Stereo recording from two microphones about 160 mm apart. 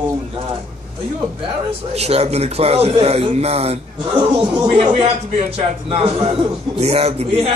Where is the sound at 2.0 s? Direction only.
40° right (ahead or behind).